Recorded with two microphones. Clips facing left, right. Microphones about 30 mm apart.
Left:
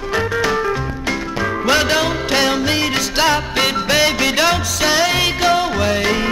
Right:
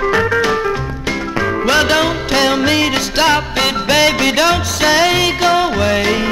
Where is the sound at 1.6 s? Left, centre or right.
Centre.